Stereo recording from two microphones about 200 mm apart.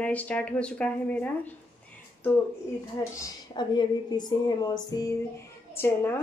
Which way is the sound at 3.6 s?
20° left (ahead or behind).